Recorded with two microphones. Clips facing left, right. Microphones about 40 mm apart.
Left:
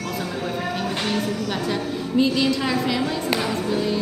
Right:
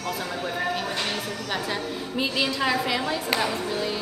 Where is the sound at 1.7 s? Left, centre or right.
Centre.